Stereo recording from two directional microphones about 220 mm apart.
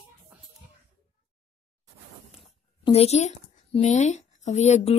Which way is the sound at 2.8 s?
30° left (ahead or behind).